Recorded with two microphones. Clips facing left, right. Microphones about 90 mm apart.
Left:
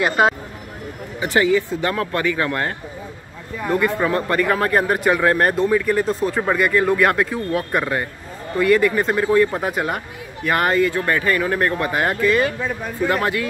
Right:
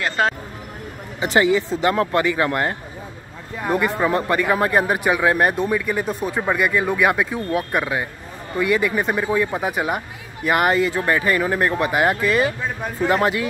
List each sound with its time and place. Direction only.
0.0 s speech: 10° left (ahead or behind)
1.2 s speech: 20° right (ahead or behind)